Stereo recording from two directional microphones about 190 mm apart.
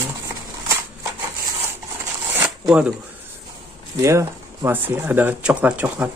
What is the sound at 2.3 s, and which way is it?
Zipper, 5° right (ahead or behind).